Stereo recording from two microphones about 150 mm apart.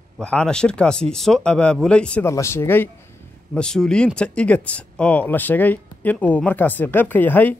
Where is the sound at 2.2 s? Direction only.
20° left (ahead or behind).